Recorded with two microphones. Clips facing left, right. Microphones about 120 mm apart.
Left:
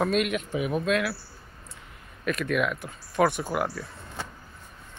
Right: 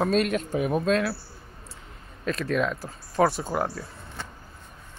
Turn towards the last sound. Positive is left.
turn(degrees=-30)  # may be behind; listen again after turning